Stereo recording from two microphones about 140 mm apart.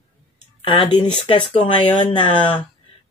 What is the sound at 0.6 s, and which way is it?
Speech, 35° left (ahead or behind).